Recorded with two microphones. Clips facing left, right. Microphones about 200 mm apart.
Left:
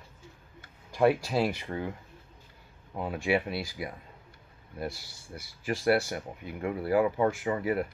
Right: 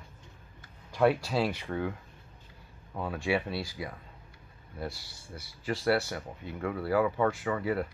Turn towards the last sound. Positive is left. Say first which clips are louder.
# left 2 dB
turn(degrees=15)  # may be behind; listen again after turning